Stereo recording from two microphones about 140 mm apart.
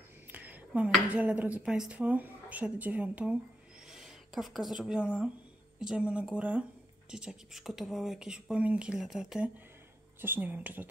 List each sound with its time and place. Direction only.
0.3 s speech: 10° right (ahead or behind)